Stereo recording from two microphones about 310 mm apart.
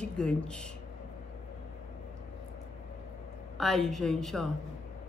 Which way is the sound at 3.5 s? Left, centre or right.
Centre.